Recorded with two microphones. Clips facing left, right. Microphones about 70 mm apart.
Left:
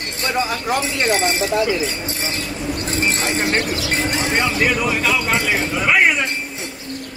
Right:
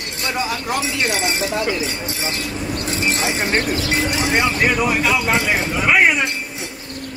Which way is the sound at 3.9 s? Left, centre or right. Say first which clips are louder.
Right 1 dB; left.